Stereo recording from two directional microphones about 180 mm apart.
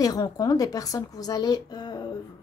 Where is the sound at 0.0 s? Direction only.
20° left (ahead or behind).